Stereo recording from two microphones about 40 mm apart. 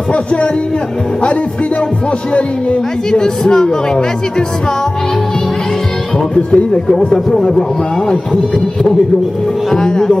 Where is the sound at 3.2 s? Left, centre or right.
Centre.